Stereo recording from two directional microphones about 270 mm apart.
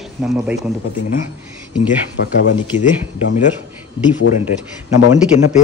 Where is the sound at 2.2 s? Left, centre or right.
Left.